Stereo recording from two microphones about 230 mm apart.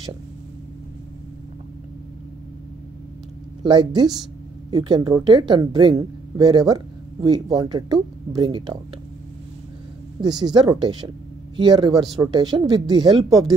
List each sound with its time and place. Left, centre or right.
3.6 s a woman's voice: centre
10.2 s a woman's voice: centre